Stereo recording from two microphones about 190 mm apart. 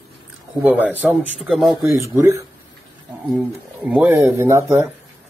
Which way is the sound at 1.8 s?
15° right (ahead or behind).